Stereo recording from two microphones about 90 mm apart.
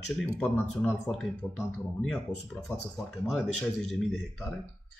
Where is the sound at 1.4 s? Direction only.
15° left (ahead or behind).